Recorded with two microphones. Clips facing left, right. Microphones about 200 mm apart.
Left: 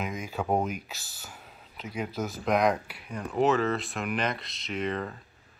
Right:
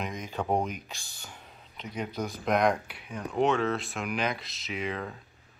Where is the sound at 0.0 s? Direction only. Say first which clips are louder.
Left 1 dB; 5° left (ahead or behind).